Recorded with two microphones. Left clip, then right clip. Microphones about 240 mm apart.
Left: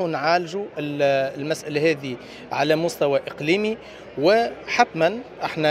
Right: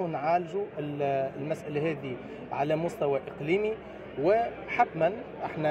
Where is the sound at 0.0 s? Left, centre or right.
Left.